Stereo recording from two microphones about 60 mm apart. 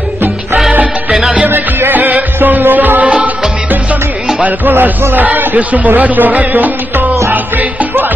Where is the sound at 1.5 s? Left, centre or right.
Right.